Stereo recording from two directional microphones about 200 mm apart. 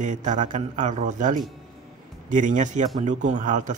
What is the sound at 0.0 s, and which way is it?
Speech, 35° right (ahead or behind).